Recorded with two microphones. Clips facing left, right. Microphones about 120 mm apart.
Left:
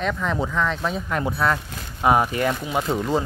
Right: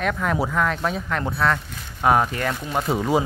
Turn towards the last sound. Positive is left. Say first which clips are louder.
# right 2 dB
turn(degrees=-10)  # may be behind; listen again after turning